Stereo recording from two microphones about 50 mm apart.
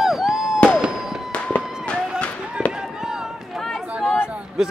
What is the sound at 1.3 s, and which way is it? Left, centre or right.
Fireworks, left.